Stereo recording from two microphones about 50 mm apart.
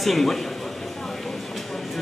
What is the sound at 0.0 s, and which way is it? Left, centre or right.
Speech, centre.